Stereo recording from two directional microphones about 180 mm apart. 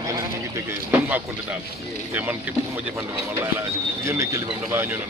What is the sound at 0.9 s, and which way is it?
Speech, 10° right (ahead or behind).